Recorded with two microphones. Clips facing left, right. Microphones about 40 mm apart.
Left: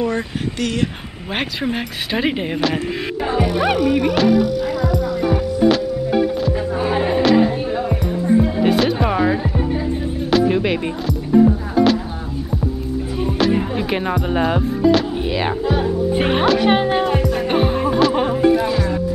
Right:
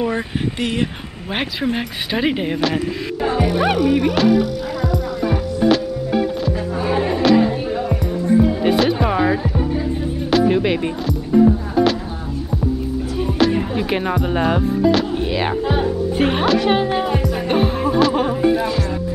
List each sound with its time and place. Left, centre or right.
0.0 s speech: centre
1.3 s speech: centre
4.8 s music: centre
13.2 s music: centre
15.6 s speech: centre
16.1 s speech: centre
17.0 s music: centre